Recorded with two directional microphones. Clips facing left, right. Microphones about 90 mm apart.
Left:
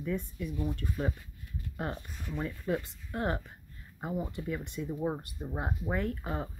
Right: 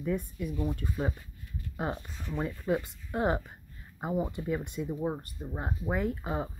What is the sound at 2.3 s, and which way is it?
Speech, 20° right (ahead or behind).